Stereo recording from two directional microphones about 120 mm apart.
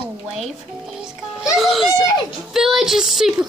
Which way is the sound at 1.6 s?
Centre (ahead or behind).